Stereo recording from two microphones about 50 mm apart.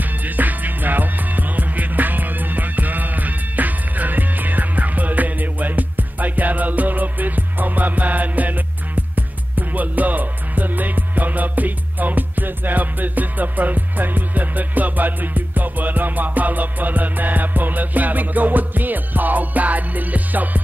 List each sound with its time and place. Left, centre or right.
0.0 s music: right